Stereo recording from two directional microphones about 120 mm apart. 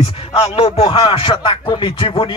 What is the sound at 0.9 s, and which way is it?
Speech, 40° left (ahead or behind).